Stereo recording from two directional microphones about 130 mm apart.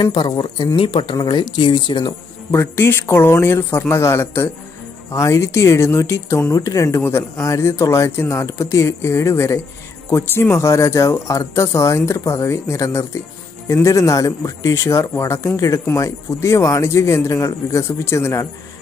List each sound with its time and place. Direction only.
0.0 s speech: 35° left (ahead or behind)
2.5 s speech: 20° left (ahead or behind)